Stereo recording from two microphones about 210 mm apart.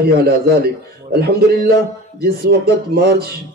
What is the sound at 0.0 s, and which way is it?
A man's voice, 50° right (ahead or behind).